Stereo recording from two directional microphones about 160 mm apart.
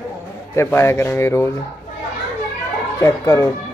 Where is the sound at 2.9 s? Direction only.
20° left (ahead or behind).